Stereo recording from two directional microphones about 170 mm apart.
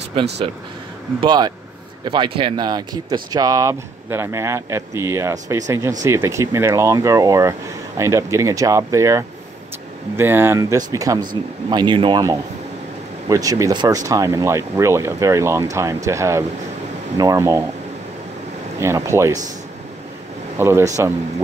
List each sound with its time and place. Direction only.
0.2 s speech: 30° right (ahead or behind); by 17.6 s 15° right (ahead or behind)
18.8 s speech: 15° right (ahead or behind)
20.5 s speech: 15° right (ahead or behind)